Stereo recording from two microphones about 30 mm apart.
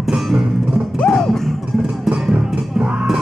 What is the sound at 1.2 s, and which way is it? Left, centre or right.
Music, centre.